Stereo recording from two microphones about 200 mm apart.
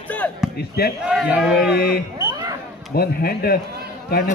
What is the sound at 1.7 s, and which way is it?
Speech, 50° left (ahead or behind).